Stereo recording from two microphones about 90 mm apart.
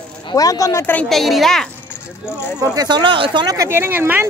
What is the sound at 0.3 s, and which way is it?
Speech, 40° left (ahead or behind).